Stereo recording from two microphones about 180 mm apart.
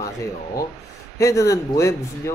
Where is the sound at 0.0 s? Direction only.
20° left (ahead or behind).